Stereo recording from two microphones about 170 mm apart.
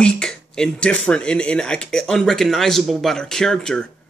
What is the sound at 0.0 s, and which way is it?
Speech, 5° left (ahead or behind).